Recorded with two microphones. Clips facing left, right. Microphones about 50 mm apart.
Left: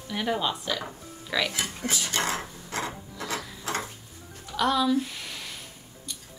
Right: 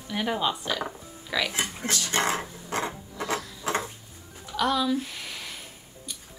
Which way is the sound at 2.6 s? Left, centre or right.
Right.